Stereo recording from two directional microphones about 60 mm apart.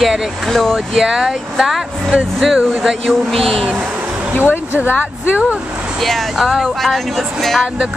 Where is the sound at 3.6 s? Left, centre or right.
Centre.